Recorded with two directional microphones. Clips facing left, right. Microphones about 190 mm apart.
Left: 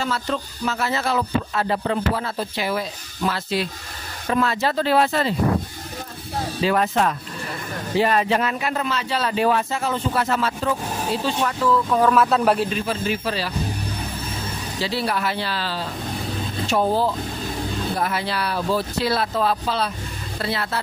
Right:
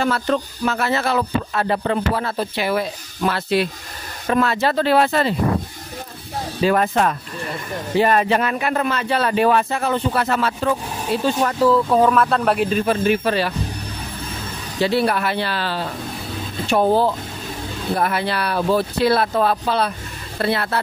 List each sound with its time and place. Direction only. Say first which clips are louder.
0.0 s music: right 5 dB; 60° right (ahead or behind)
6.6 s speech: right 3 dB; 50° right (ahead or behind)
8.0 s music: right 2 dB; 50° right (ahead or behind)
11.2 s speech: right 6 dB; 45° right (ahead or behind)
12.1 s speech: even; 5° left (ahead or behind)
12.7 s music: right 6 dB; 55° right (ahead or behind)
14.8 s music: right 6 dB; 55° right (ahead or behind)